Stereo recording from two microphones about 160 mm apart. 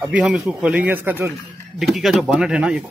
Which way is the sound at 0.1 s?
5° right (ahead or behind).